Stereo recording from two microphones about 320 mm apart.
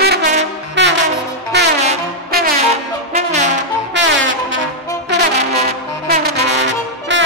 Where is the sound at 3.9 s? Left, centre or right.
Right.